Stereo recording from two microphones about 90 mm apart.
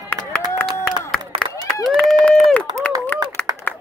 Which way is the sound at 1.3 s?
90° right.